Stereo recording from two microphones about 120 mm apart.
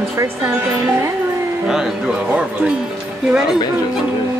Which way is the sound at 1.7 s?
5° right (ahead or behind).